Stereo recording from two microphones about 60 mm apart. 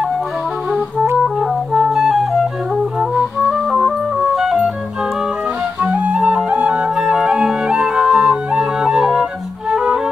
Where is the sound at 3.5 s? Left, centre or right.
Centre.